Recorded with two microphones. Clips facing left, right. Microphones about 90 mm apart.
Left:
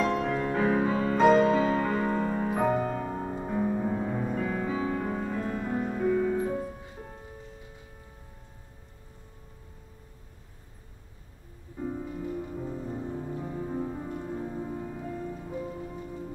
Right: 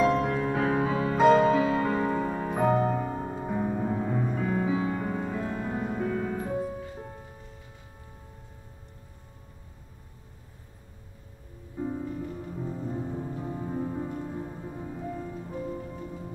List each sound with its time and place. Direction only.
0.2 s music: centre (ahead or behind)
11.8 s music: 15° right (ahead or behind)
12.4 s music: centre (ahead or behind)
14.4 s music: 10° left (ahead or behind)
14.9 s music: 5° right (ahead or behind)